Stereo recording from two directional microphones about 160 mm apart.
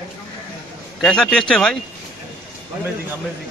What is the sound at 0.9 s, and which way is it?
Speech, 5° left (ahead or behind).